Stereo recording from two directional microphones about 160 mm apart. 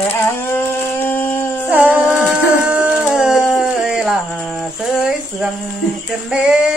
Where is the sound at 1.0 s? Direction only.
15° left (ahead or behind).